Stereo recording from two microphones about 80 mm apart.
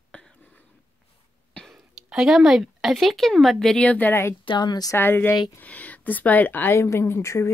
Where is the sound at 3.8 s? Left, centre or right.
Centre.